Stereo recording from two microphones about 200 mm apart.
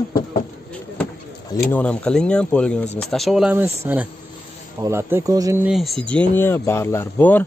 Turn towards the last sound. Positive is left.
turn(degrees=10)  # may be behind; listen again after turning